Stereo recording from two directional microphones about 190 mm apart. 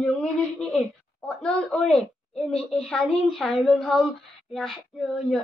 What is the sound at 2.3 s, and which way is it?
Speech, 30° left (ahead or behind).